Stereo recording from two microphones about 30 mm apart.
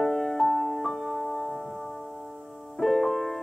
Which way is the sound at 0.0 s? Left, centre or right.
Centre.